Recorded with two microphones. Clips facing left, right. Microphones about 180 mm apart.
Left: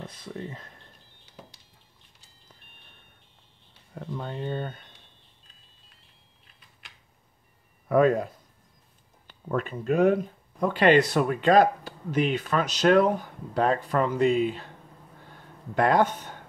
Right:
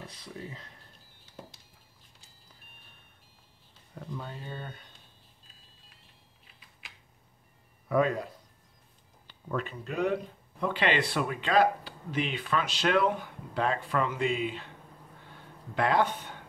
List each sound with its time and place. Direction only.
0.0 s speech: 50° left (ahead or behind)
4.0 s speech: 70° left (ahead or behind)
6.4 s typing: centre (ahead or behind)
7.9 s speech: 50° left (ahead or behind)
9.3 s speech: 50° left (ahead or behind)
15.7 s speech: 45° left (ahead or behind)